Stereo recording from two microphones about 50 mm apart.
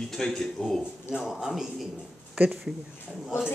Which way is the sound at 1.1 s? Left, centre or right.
Centre.